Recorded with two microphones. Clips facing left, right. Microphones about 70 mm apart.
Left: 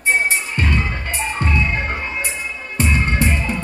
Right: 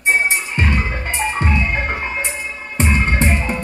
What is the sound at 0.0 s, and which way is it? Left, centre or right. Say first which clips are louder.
Music: right 1 dB; right.